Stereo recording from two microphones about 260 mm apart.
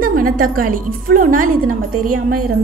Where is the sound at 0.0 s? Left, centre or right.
Right.